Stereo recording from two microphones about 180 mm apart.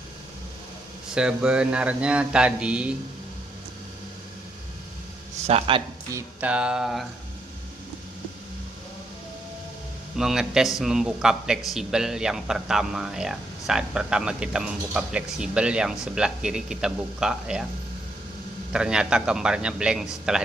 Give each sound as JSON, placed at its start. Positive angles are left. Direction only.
{"t": 1.1, "sound": "a man's voice", "side_deg": -5}
{"t": 5.5, "sound": "speech", "side_deg": -30}
{"t": 6.1, "sound": "a man's voice", "side_deg": -5}
{"t": 10.1, "sound": "a man's voice", "side_deg": 0}
{"t": 18.7, "sound": "a man's voice", "side_deg": -5}